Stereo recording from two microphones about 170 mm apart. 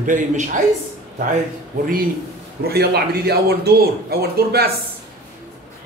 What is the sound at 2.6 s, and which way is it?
Speech, 70° right (ahead or behind).